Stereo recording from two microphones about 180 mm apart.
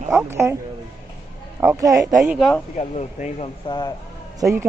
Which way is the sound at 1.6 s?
15° right (ahead or behind).